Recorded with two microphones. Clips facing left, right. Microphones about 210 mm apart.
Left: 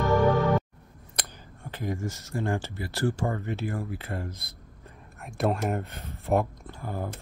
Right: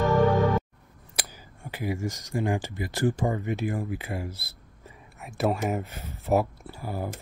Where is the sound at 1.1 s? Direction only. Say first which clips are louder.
Right 1 dB; 10° right (ahead or behind).